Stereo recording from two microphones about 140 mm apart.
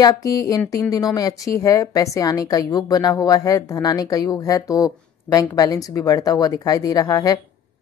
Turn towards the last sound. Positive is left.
turn(degrees=25)  # may be behind; listen again after turning